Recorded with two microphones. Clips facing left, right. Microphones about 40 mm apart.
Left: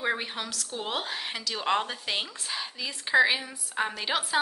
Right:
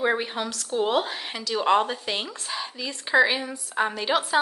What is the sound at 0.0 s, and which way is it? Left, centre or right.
Speech, centre.